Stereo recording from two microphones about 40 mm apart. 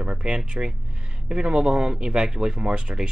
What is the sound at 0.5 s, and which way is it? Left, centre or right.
Speech, right.